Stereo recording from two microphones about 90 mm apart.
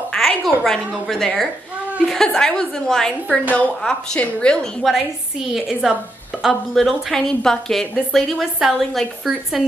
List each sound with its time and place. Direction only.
0.1 s a sound: 10° left (ahead or behind)
0.7 s a woman's voice: 5° left (ahead or behind)
3.4 s a woman's voice: 20° left (ahead or behind)
5.5 s a woman's voice: 5° right (ahead or behind)